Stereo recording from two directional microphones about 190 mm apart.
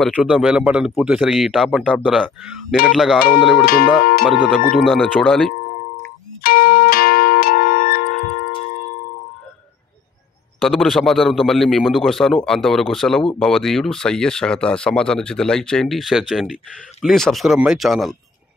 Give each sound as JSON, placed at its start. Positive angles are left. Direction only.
{"t": 0.0, "sound": "speech", "side_deg": 0}
{"t": 4.0, "sound": "speech", "side_deg": 50}
{"t": 4.3, "sound": "speech", "side_deg": -5}
{"t": 6.4, "sound": "music", "side_deg": 50}
{"t": 10.6, "sound": "speech", "side_deg": 0}